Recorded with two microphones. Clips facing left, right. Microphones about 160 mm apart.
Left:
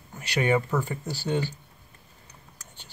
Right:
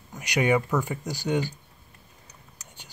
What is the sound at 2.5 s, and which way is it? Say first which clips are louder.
Whispering: right 1 dB; 15° right (ahead or behind).